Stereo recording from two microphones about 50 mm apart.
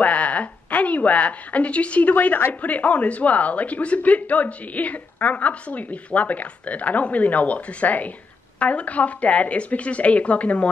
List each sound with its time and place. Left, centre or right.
0.0 s speech: left